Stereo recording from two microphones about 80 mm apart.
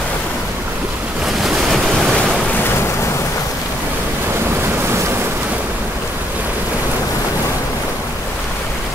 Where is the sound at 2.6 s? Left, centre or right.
Left.